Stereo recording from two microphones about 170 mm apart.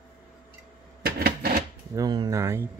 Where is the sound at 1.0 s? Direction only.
65° right (ahead or behind).